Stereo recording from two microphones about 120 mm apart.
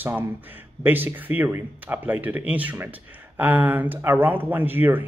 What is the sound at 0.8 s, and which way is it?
Speech, 15° right (ahead or behind).